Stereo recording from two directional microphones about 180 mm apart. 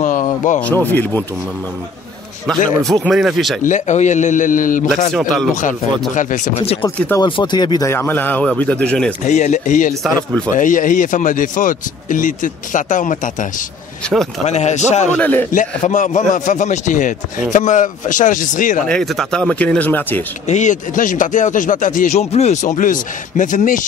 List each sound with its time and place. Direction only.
0.0 s a sound: 45° left (ahead or behind)
0.6 s speech: 10° left (ahead or behind)
2.8 s speech: centre (ahead or behind)
3.6 s speech: 40° left (ahead or behind)
5.1 s speech: centre (ahead or behind)
5.5 s speech: 45° left (ahead or behind); by 9.1 s 5° left (ahead or behind)
9.2 s speech: 40° left (ahead or behind)
15.1 s speech: 10° left (ahead or behind)
15.5 s speech: 45° left (ahead or behind)
18.9 s speech: centre (ahead or behind)
20.4 s speech: 40° left (ahead or behind)